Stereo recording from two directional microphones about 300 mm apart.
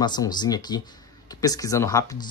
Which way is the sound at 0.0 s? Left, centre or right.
Centre.